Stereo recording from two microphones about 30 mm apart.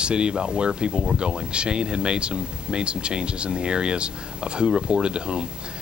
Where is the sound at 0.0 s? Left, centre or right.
Right.